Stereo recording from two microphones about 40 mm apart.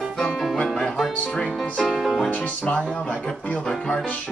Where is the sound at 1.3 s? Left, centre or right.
Centre.